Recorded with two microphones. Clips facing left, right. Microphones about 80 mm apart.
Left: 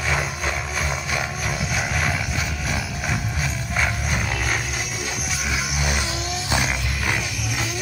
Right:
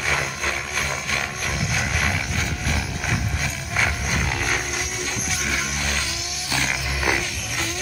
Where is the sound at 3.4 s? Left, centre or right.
Centre.